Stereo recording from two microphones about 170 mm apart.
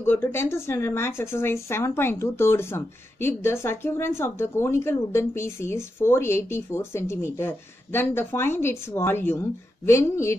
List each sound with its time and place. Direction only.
0.0 s speech: 10° left (ahead or behind)